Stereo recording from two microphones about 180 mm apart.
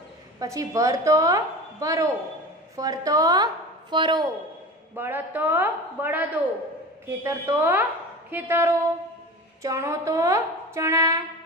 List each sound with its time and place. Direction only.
0.4 s a woman's voice: 20° right (ahead or behind)
4.9 s a woman's voice: 10° right (ahead or behind)